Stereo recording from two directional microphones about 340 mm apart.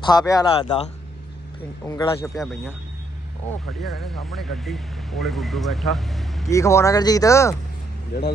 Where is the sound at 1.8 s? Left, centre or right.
Centre.